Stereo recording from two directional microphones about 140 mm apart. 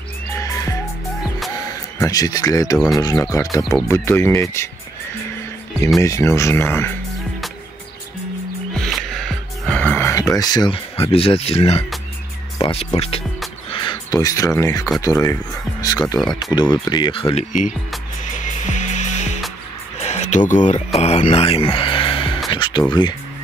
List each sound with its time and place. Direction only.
0.3 s music: 20° left (ahead or behind)
2.0 s speech: 25° left (ahead or behind)
5.9 s speech: 20° left (ahead or behind)
8.7 s music: centre (ahead or behind); by 11.8 s 45° left (ahead or behind)
12.5 s speech: 35° left (ahead or behind)
17.5 s speech: 65° left (ahead or behind)
18.2 s music: 60° left (ahead or behind)
20.0 s a sound: 55° left (ahead or behind)
21.0 s speech: 50° left (ahead or behind)
21.4 s music: 45° left (ahead or behind)